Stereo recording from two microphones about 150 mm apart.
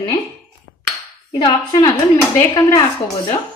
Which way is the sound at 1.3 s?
30° left (ahead or behind).